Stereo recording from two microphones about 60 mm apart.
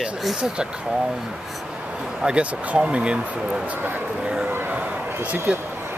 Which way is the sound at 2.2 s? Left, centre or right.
Right.